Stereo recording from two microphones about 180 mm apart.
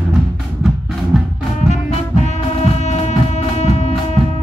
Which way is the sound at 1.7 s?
40° left (ahead or behind).